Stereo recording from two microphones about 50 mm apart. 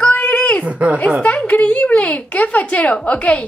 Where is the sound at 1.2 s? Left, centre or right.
Left.